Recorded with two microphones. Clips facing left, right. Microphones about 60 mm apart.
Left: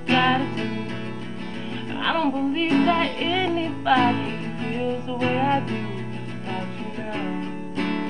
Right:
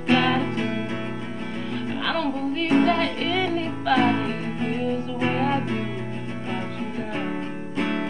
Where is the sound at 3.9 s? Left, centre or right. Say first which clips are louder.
Left 1 dB; centre.